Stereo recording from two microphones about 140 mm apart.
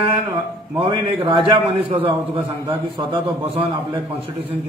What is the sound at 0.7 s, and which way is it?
A man's voice, 40° right (ahead or behind).